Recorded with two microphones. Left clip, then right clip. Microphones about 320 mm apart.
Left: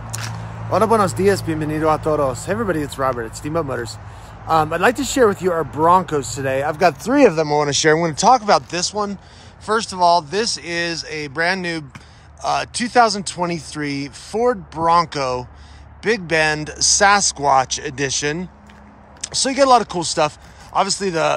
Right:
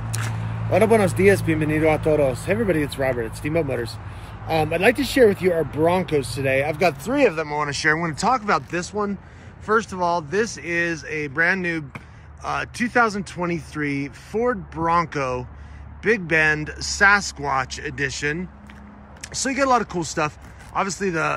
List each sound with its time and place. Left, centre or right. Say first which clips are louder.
0.1 s single-lens reflex camera: left 1 dB; centre
0.7 s speech: left 2 dB; centre